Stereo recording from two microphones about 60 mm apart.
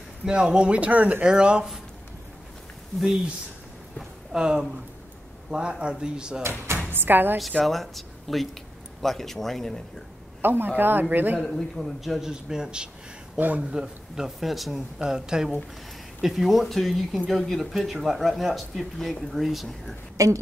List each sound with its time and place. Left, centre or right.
0.2 s a man's voice: centre
4.3 s a man's voice: centre
6.9 s speech: right
7.6 s speech: centre
10.4 s speech: right
11.4 s a man's voice: centre
13.4 s speech: right
13.7 s a man's voice: centre
20.2 s a woman's voice: right